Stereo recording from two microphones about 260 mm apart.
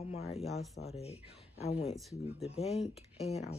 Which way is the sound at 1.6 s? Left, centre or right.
Left.